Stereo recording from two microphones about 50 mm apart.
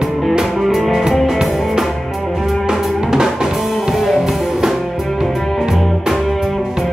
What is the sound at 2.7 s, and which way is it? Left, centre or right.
Drum kit, centre.